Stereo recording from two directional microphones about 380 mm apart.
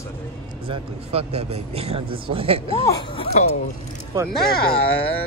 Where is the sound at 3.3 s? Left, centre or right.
Centre.